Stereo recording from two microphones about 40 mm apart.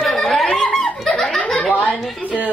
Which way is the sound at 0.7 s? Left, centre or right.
Centre.